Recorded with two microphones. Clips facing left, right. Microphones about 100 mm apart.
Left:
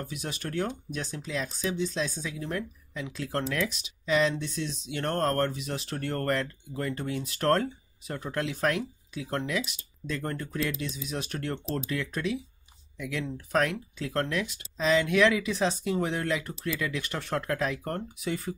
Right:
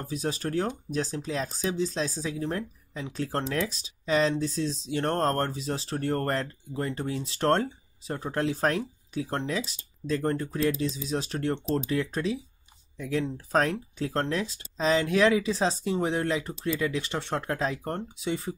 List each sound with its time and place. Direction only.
0.0 s speech: 35° right (ahead or behind)